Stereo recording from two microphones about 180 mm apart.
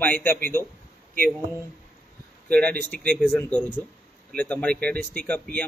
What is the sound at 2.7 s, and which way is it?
Speech, 55° right (ahead or behind).